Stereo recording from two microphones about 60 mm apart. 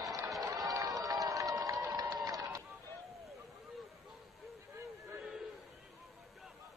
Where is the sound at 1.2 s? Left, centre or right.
Right.